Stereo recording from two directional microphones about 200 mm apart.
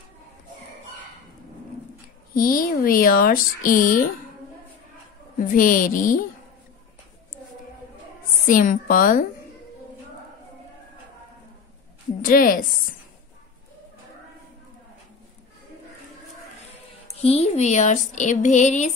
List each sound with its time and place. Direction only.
2.3 s speech: 45° left (ahead or behind)
5.4 s speech: 45° left (ahead or behind)
8.5 s speech: 40° left (ahead or behind)
12.2 s speech: 45° left (ahead or behind)
17.2 s speech: 30° left (ahead or behind)